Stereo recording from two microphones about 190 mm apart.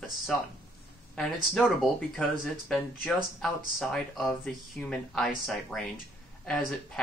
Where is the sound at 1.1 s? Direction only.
Centre (ahead or behind).